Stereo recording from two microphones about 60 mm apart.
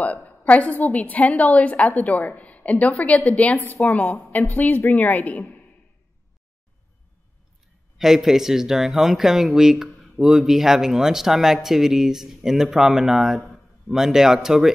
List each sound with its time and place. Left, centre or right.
0.0 s a woman's voice: left
8.0 s speech: centre